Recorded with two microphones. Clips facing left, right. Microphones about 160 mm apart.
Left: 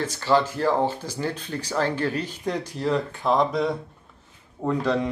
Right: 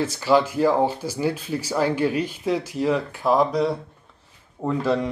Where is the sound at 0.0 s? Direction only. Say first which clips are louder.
Right 2 dB; 10° right (ahead or behind).